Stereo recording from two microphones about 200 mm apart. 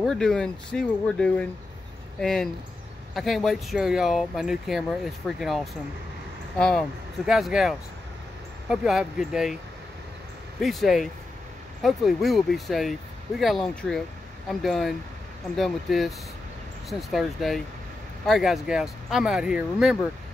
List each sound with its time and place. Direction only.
0.0 s speech: 5° left (ahead or behind)
7.2 s speech: centre (ahead or behind)
10.6 s speech: centre (ahead or behind)